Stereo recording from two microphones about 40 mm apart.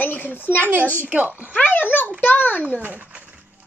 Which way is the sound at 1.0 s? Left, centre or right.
Right.